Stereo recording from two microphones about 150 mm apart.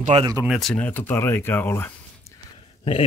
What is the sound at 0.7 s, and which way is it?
Speech, 10° left (ahead or behind).